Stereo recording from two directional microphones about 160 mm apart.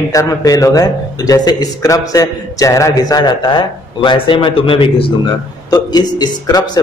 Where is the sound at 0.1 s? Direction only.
20° left (ahead or behind).